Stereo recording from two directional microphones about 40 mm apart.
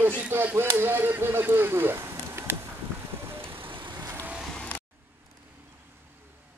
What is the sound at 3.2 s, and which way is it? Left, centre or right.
Vehicle, right.